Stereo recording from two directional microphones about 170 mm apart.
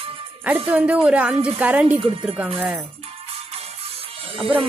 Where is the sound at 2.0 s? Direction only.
35° right (ahead or behind).